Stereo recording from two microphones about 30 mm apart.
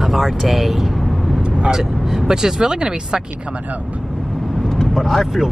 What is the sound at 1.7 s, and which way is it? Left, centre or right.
Speech, centre.